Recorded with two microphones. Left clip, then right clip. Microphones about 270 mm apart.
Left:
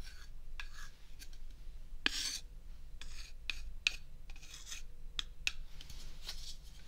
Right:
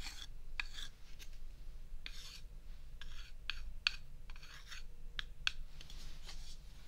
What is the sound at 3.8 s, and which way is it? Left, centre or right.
Filing, right.